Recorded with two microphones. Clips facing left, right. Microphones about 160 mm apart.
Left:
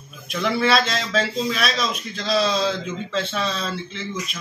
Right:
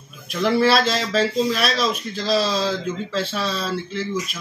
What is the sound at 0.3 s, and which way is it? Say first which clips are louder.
Speech: right 3 dB; centre (ahead or behind).